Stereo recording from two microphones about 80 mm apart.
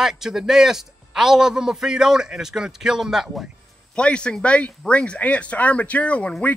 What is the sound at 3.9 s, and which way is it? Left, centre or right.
Speech, centre.